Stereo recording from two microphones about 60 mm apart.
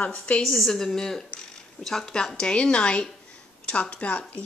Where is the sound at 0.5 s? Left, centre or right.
Centre.